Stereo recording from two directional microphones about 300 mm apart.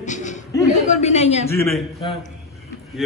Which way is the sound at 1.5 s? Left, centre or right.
Centre.